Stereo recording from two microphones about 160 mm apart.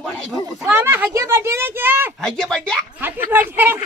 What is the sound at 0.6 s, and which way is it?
Speech, 15° right (ahead or behind).